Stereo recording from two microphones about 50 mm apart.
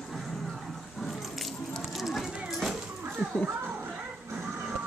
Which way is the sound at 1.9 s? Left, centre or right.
Centre.